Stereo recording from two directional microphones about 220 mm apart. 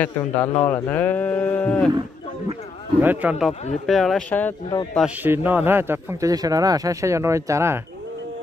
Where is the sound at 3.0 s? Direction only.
10° right (ahead or behind).